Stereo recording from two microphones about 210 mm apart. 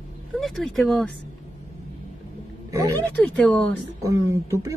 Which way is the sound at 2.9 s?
5° left (ahead or behind).